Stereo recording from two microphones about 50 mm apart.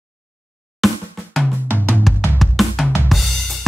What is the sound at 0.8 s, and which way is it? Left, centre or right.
Drum, centre.